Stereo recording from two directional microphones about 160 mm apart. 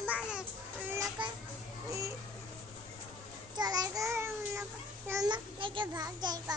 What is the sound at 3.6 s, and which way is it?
Child singing, 25° right (ahead or behind).